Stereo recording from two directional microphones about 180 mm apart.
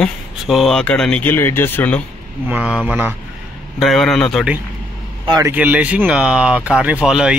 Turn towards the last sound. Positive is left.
turn(degrees=-5)  # may be behind; listen again after turning